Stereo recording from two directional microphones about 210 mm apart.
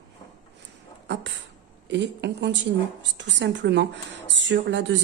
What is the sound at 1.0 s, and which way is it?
Beatboxing, 55° right (ahead or behind).